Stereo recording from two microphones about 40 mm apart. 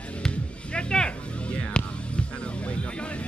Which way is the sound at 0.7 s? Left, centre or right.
Left.